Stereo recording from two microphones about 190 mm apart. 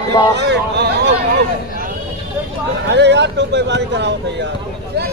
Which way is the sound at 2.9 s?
65° right (ahead or behind).